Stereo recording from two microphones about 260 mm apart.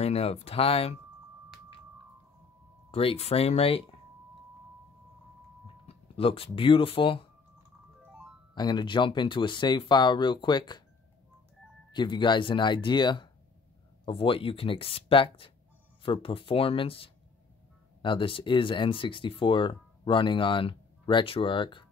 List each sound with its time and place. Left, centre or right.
0.0 s speech: left
2.9 s speech: left
5.9 s speech: left
8.5 s speech: centre
11.9 s speech: centre